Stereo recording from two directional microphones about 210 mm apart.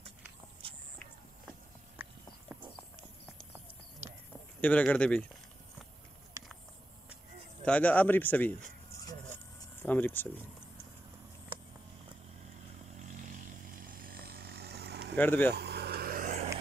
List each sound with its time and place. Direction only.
0.6 s a sound: 25° right (ahead or behind)
2.0 s a sound: 10° right (ahead or behind)
4.6 s speech: 5° left (ahead or behind)
7.6 s speech: 5° left (ahead or behind)
9.8 s speech: 10° left (ahead or behind)
13.0 s chainsaw: 35° right (ahead or behind)
15.1 s speech: 10° left (ahead or behind)
15.5 s vehicle: 50° right (ahead or behind)